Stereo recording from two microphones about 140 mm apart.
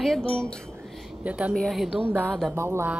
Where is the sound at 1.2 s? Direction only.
10° right (ahead or behind).